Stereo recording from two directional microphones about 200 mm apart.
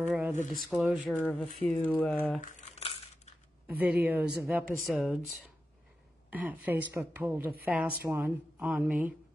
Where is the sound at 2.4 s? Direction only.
30° left (ahead or behind).